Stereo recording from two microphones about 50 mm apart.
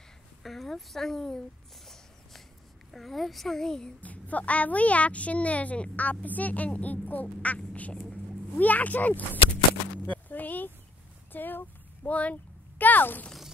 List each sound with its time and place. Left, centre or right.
0.4 s speech: centre
2.9 s speech: centre
4.0 s a woman's voice: left
10.0 s a sound: left
11.3 s speech: left